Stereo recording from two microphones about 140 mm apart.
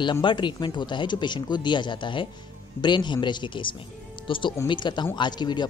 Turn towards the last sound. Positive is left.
turn(degrees=30)  # may be behind; listen again after turning